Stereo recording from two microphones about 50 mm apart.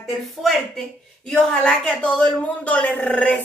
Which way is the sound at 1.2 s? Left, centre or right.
Centre.